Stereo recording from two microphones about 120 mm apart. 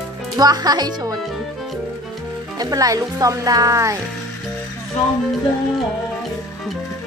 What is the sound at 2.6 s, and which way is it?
Speech, 30° right (ahead or behind).